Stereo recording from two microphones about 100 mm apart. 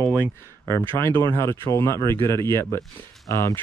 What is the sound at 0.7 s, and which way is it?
Speech, 25° left (ahead or behind).